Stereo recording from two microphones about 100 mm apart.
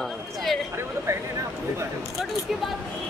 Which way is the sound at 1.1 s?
30° right (ahead or behind).